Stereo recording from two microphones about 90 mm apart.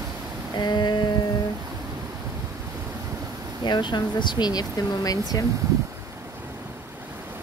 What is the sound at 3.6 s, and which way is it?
Speech, 55° left (ahead or behind).